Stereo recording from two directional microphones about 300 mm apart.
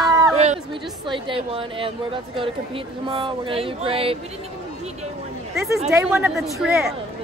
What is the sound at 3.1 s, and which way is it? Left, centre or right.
Speech, centre.